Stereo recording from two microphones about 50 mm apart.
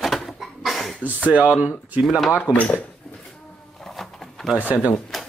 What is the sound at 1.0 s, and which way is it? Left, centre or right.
Speech, right.